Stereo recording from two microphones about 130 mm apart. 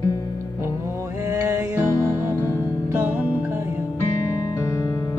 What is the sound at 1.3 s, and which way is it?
Music, 20° right (ahead or behind).